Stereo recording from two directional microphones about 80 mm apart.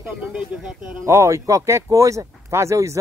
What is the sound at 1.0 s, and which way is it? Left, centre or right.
Speech, right.